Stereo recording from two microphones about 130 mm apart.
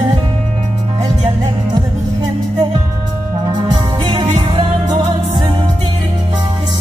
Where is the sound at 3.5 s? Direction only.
35° right (ahead or behind).